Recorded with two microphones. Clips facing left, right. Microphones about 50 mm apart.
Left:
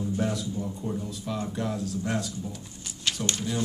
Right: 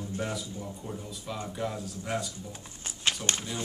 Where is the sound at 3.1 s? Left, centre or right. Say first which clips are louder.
Right 1 dB; right.